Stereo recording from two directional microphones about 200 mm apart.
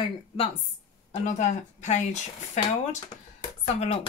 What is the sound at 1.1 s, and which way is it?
Speech, 35° left (ahead or behind).